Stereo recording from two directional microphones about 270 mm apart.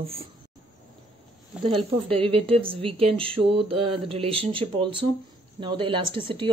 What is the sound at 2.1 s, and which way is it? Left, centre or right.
A man's voice, centre.